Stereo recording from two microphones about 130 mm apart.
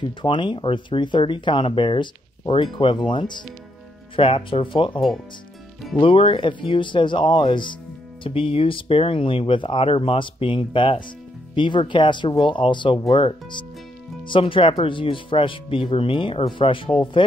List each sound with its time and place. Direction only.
0.0 s speech: 40° left (ahead or behind)